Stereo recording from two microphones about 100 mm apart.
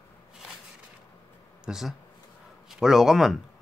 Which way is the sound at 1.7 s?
5° right (ahead or behind).